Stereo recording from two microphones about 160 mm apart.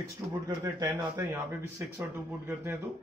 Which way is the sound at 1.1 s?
10° right (ahead or behind).